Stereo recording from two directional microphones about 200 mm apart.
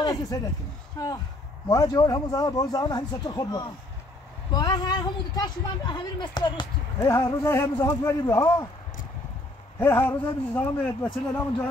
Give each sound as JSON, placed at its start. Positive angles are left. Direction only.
{"t": 0.0, "sound": "speech", "side_deg": 20}
{"t": 9.8, "sound": "a man's voice", "side_deg": 10}